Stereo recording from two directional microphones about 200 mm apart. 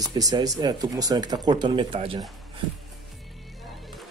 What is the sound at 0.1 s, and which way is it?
Speech, 20° right (ahead or behind).